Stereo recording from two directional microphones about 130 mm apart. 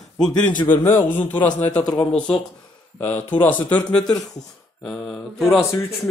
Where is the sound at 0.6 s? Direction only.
15° left (ahead or behind).